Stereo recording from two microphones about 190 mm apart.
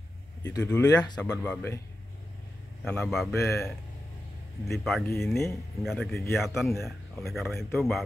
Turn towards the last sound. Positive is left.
turn(degrees=0)  # may be behind; listen again after turning